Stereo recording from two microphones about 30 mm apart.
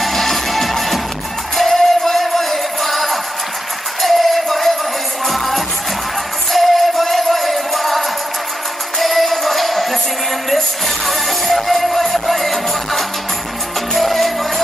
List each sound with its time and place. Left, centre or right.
0.0 s music: centre
11.1 s music: centre